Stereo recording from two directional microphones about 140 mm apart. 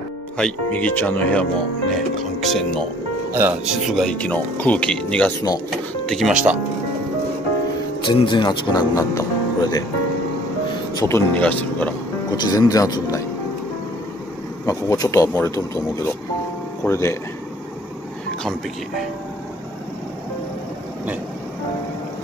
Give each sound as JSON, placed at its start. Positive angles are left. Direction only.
{"t": 0.4, "sound": "speech", "side_deg": 10}
{"t": 3.3, "sound": "speech", "side_deg": -15}
{"t": 3.6, "sound": "speech", "side_deg": 0}
{"t": 8.1, "sound": "speech", "side_deg": 35}
{"t": 11.0, "sound": "speech", "side_deg": 20}
{"t": 12.3, "sound": "speech", "side_deg": 25}
{"t": 14.7, "sound": "speech", "side_deg": 25}